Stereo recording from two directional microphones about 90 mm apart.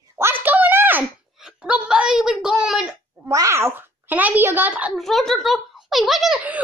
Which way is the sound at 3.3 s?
35° right (ahead or behind).